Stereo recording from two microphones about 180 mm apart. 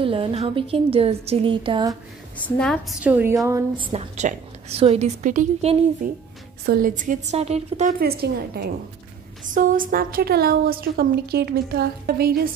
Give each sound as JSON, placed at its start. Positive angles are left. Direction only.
{"t": 0.0, "sound": "a woman's voice", "side_deg": -30}
{"t": 2.6, "sound": "a woman's voice", "side_deg": 5}
{"t": 3.0, "sound": "a woman's voice", "side_deg": -10}
{"t": 3.7, "sound": "a woman's voice", "side_deg": -30}
{"t": 8.0, "sound": "a woman's voice", "side_deg": -60}
{"t": 9.5, "sound": "a woman's voice", "side_deg": -50}